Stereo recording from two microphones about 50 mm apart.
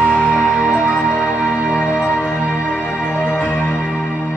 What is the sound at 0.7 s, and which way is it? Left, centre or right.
Music, centre.